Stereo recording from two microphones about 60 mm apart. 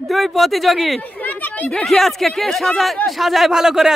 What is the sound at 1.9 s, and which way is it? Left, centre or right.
Speech, centre.